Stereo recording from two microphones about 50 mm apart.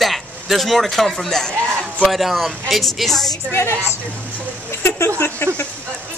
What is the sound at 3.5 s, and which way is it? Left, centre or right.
Speech, left.